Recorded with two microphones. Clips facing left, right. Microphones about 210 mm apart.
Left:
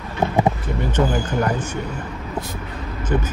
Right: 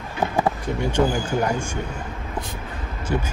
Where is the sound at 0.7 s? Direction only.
10° right (ahead or behind).